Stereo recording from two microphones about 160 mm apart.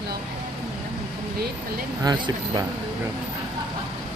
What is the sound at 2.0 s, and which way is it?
Speech, 25° right (ahead or behind).